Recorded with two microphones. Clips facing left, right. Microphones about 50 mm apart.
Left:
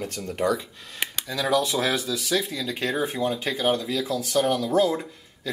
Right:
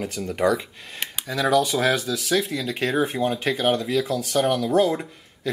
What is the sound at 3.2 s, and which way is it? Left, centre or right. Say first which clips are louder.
Speech: right 2 dB; centre.